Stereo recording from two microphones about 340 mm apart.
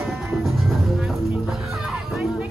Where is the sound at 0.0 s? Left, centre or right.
Centre.